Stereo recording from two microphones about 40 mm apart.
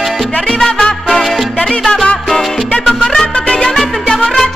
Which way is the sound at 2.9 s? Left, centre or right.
Centre.